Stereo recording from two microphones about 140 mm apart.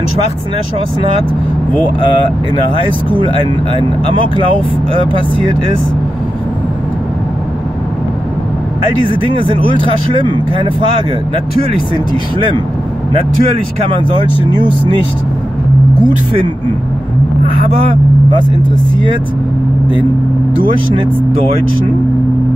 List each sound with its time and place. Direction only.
9.0 s speech: 35° right (ahead or behind)
13.1 s speech: 40° right (ahead or behind)
20.6 s speech: 35° right (ahead or behind)